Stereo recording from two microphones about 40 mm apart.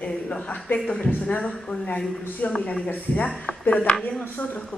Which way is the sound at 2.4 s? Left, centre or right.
Left.